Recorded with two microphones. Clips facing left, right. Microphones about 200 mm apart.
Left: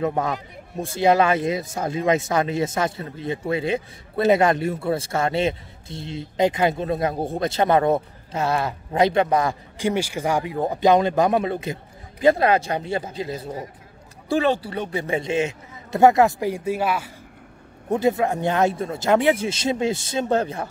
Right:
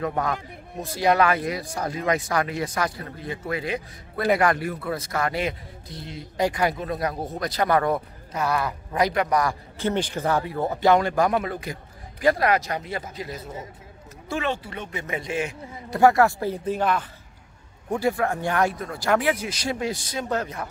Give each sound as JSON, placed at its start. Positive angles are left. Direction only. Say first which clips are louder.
{"t": 0.0, "sound": "speech", "louder": "left 3 dB", "side_deg": 25}
{"t": 9.8, "sound": "speech", "louder": "left 2 dB", "side_deg": 10}
{"t": 17.8, "sound": "speech", "louder": "left 3 dB", "side_deg": 20}